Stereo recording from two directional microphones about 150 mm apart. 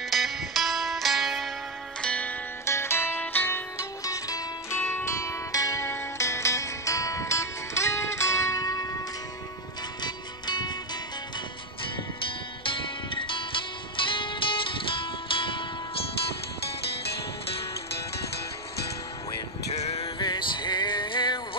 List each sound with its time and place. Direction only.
0.1 s music: centre (ahead or behind)
2.0 s zither: 10° left (ahead or behind)
4.0 s music: 20° left (ahead or behind)
10.0 s music: 30° left (ahead or behind)
12.6 s music: 35° left (ahead or behind)
19.7 s music: 45° left (ahead or behind)
20.2 s music: 30° left (ahead or behind)